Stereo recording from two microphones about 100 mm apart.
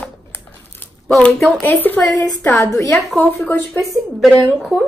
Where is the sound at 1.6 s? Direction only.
20° left (ahead or behind).